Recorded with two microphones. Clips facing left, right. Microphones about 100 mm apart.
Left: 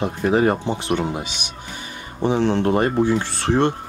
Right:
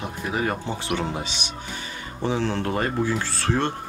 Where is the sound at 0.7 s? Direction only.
20° left (ahead or behind).